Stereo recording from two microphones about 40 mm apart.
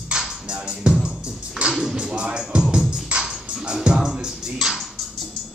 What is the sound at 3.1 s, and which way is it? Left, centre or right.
Music, right.